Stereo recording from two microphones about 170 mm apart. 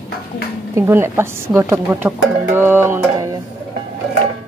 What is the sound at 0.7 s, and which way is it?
A woman's voice, 15° right (ahead or behind).